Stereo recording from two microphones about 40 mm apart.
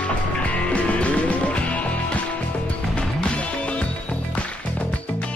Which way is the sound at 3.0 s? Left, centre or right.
Left.